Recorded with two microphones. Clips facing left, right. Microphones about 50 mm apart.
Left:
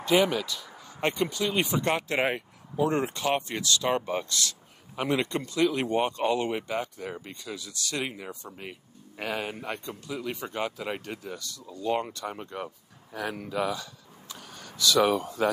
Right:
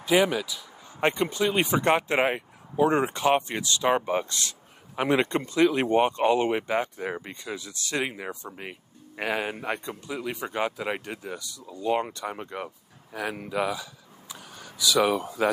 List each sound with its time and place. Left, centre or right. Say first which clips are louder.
0.0 s speech: right 1 dB; centre
1.1 s speech: right 3 dB; centre
2.2 s a sound: right 2 dB; centre
2.8 s speech: right 4 dB; right